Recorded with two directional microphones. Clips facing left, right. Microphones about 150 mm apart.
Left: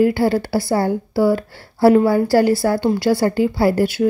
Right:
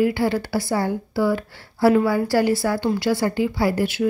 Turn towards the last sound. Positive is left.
turn(degrees=35)  # may be behind; listen again after turning